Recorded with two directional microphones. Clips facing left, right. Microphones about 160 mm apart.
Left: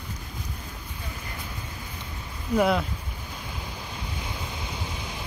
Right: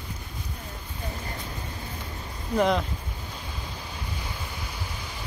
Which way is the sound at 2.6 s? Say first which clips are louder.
Even; 5° left (ahead or behind).